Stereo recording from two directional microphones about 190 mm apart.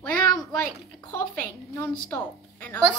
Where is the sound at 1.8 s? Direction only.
10° left (ahead or behind).